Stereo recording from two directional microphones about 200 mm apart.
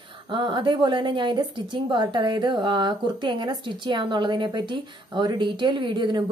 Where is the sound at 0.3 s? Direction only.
25° right (ahead or behind).